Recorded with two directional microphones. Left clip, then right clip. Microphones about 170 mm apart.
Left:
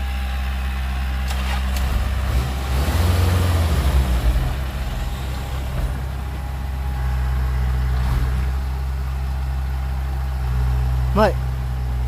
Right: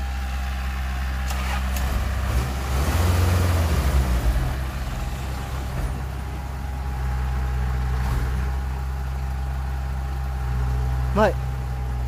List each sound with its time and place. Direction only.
2.8 s vehicle: 5° right (ahead or behind)
11.1 s vehicle: 5° left (ahead or behind)